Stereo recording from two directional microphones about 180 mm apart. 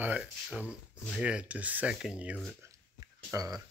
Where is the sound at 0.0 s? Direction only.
5° right (ahead or behind).